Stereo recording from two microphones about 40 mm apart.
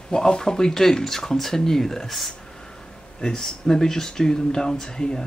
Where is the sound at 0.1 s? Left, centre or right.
Centre.